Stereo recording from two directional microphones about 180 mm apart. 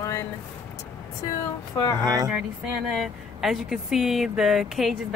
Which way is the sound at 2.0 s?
20° right (ahead or behind).